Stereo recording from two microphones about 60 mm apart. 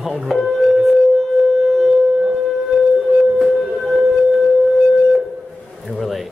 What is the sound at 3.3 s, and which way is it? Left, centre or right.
Music, centre.